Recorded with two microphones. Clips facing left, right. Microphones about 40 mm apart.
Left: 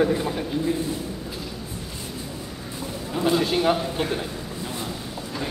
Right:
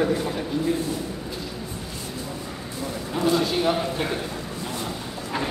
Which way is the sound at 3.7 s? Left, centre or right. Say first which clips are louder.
Even; centre.